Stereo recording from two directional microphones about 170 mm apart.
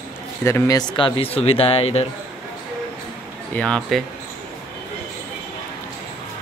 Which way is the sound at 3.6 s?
5° left (ahead or behind).